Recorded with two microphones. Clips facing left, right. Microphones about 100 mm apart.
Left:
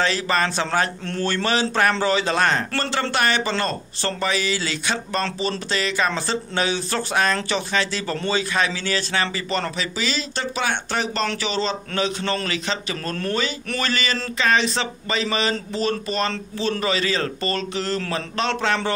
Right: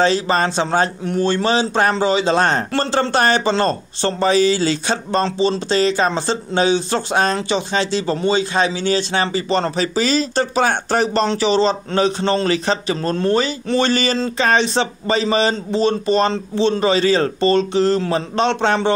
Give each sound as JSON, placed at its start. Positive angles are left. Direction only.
{"t": 0.0, "sound": "a man's voice", "side_deg": -30}